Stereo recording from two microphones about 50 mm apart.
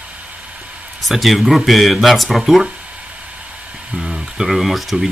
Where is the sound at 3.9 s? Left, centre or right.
Centre.